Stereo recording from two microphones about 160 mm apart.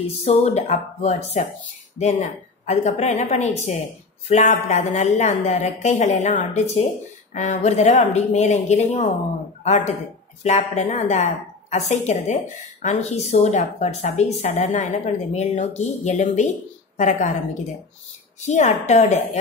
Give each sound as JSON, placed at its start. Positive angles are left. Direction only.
{"t": 0.2, "sound": "a woman's voice", "side_deg": 45}
{"t": 18.4, "sound": "a woman's voice", "side_deg": 45}